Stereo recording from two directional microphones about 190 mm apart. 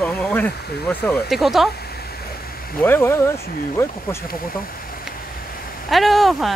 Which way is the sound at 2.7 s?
10° left (ahead or behind).